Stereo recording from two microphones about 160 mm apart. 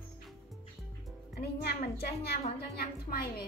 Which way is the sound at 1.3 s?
90° left.